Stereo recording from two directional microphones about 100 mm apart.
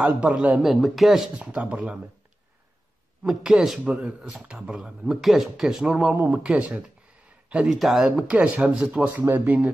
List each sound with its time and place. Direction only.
0.0 s speech: 10° right (ahead or behind)
3.3 s speech: 5° right (ahead or behind)
6.1 s speech: 15° right (ahead or behind)
9.1 s speech: 20° right (ahead or behind)